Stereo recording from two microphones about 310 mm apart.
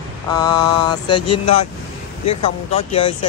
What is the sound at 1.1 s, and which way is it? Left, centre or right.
Speech, left.